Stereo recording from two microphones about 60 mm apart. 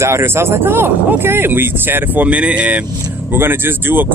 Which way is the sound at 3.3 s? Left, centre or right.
Right.